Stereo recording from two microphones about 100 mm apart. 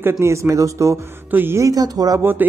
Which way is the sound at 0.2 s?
30° right (ahead or behind).